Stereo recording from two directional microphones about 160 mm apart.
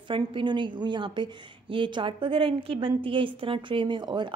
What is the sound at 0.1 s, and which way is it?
A woman's voice, 30° right (ahead or behind).